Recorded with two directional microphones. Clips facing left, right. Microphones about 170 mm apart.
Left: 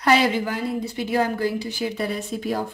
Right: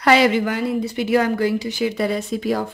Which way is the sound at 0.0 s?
85° right.